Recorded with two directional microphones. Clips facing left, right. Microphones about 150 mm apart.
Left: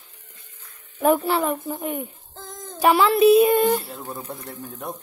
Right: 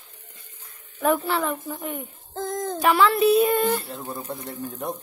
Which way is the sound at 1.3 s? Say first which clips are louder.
Left 3 dB; 15° left (ahead or behind).